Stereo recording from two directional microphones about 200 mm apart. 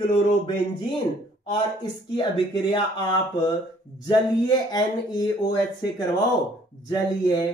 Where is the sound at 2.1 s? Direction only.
25° left (ahead or behind).